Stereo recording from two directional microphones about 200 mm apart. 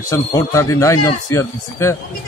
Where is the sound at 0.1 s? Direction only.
15° left (ahead or behind).